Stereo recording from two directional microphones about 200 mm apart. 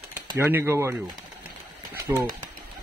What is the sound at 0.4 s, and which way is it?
Speech, 10° right (ahead or behind).